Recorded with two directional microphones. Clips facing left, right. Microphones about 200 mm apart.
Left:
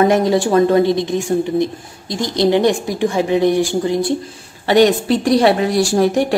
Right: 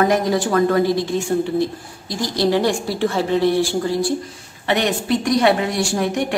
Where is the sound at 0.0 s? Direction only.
25° left (ahead or behind).